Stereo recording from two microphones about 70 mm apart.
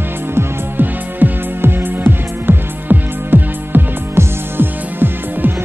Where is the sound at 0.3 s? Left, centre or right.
Right.